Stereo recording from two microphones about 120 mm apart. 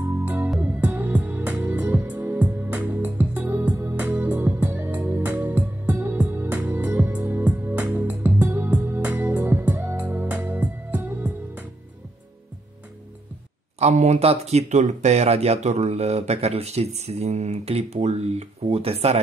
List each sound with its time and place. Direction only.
0.7 s music: 15° right (ahead or behind)
13.7 s speech: 65° right (ahead or behind)